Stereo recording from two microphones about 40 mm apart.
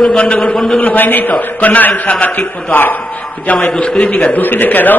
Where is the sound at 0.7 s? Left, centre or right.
Left.